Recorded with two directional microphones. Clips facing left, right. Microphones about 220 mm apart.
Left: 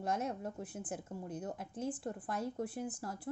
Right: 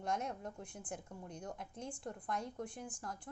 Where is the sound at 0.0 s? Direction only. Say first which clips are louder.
Left 3 dB; 5° left (ahead or behind).